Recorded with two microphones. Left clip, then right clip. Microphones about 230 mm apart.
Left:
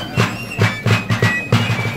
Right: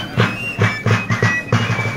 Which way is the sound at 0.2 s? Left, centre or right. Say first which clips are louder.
Right 1 dB; left.